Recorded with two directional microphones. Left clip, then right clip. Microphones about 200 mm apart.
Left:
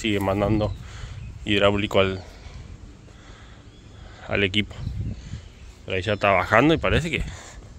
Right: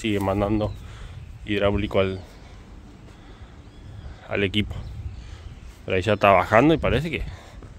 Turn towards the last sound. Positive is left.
turn(degrees=-5)  # may be behind; listen again after turning